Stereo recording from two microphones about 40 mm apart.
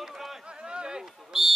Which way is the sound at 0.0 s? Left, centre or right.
Centre.